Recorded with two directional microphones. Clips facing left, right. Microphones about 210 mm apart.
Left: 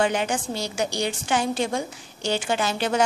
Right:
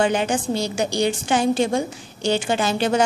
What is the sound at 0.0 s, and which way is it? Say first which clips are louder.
A woman's voice: right 3 dB; 30° right (ahead or behind).